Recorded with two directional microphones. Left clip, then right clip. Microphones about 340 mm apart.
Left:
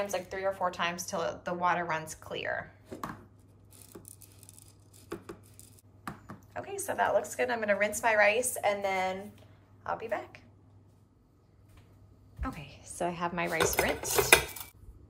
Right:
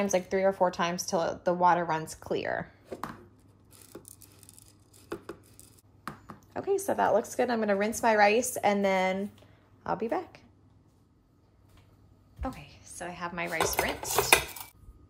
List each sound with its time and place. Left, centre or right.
0.0 s speech: centre
6.2 s speech: centre
12.4 s chopping: centre